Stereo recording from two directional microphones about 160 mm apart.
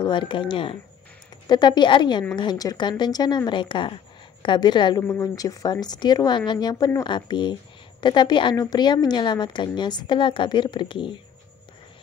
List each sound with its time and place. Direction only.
0.0 s a woman's voice: 30° left (ahead or behind)
5.0 s a woman's voice: 15° left (ahead or behind)